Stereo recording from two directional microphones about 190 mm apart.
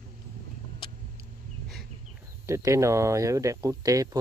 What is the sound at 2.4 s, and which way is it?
Speech, 15° right (ahead or behind).